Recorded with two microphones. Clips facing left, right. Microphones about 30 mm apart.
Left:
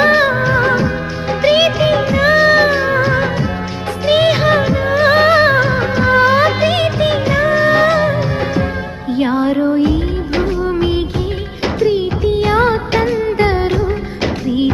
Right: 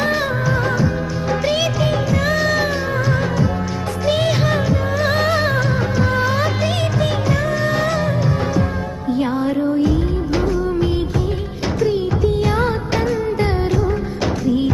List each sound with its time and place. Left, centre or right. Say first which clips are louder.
0.0 s music of bollywood: left 7 dB; left
1.4 s music: left 9 dB; left
9.2 s music: left 6 dB; left